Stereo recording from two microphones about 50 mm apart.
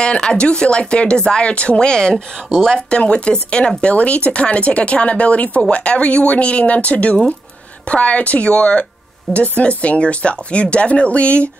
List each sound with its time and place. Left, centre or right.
0.0 s speech: centre